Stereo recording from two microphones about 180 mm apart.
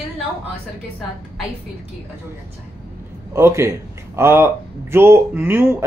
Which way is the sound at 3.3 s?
15° right (ahead or behind).